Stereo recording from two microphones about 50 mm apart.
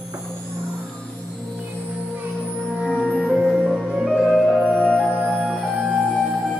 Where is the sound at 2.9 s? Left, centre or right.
Left.